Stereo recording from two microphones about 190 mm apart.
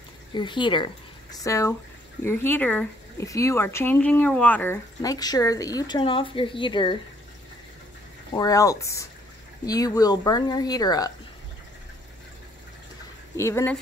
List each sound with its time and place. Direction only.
0.3 s speech: 25° left (ahead or behind)
8.4 s a woman's voice: 20° left (ahead or behind)
13.4 s speech: 15° left (ahead or behind)